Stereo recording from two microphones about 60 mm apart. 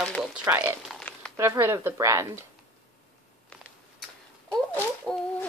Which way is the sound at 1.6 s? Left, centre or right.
Right.